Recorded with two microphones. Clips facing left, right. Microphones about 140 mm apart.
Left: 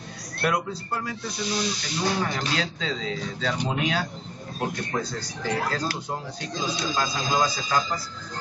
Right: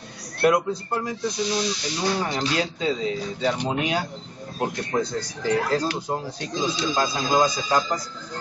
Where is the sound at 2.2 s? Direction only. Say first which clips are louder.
Right 3 dB; 20° right (ahead or behind).